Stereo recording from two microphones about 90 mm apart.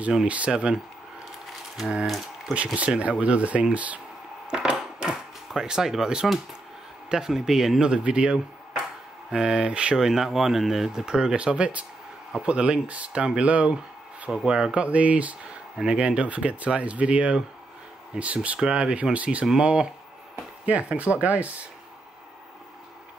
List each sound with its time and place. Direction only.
0.0 s speech: 15° right (ahead or behind)
2.0 s speech: centre (ahead or behind)
2.5 s speech: 15° right (ahead or behind)
4.5 s dishes: 10° right (ahead or behind)
7.1 s speech: 5° right (ahead or behind)